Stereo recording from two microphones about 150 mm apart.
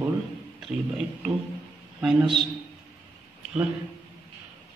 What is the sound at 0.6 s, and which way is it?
Speech, centre (ahead or behind).